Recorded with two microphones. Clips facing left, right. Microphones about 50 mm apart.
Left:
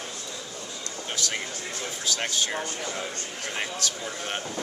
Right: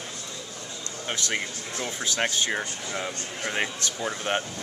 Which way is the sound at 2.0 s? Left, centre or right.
Right.